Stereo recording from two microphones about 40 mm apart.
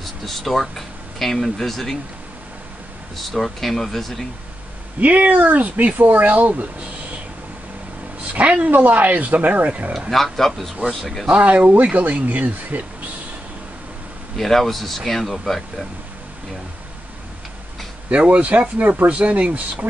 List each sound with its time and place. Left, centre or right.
0.0 s speech: centre
3.2 s speech: centre
5.0 s speech: right
8.3 s a woman's voice: right
10.1 s speech: centre
11.4 s speech: right
14.3 s speech: centre
18.1 s speech: right